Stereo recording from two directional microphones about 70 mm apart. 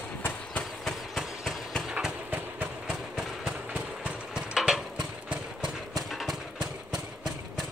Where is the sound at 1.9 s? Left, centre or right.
Centre.